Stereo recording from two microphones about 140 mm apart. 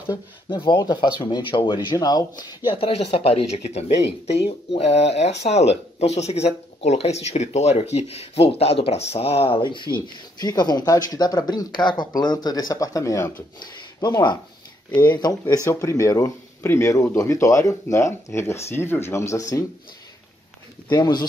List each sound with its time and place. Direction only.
0.1 s speech: 30° left (ahead or behind)
20.9 s speech: 30° left (ahead or behind)